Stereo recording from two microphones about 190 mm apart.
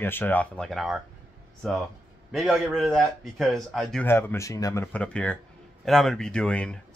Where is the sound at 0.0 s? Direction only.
10° left (ahead or behind).